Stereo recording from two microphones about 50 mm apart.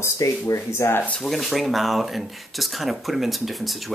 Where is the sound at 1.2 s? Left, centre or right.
Centre.